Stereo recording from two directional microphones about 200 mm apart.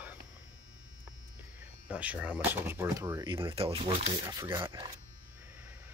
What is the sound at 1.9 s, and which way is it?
Speech, 5° right (ahead or behind).